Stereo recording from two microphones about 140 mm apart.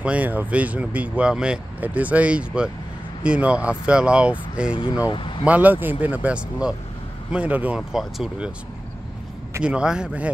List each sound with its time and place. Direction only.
0.0 s speech: 10° right (ahead or behind)
5.0 s speech: 35° left (ahead or behind)
5.4 s speech: 10° right (ahead or behind)
9.6 s speech: 5° right (ahead or behind)